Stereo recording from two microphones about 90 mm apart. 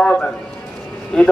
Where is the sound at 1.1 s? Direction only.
5° left (ahead or behind).